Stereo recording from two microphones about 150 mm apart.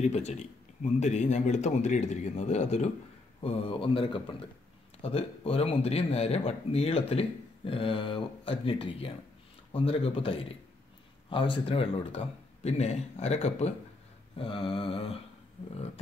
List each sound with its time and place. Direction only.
0.0 s speech: 45° left (ahead or behind)
3.3 s speech: 40° left (ahead or behind)